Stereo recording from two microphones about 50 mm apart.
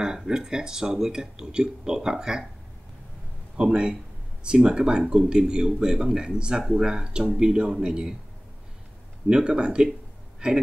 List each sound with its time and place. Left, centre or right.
0.0 s speech: centre
3.5 s speech: centre
9.3 s speech: centre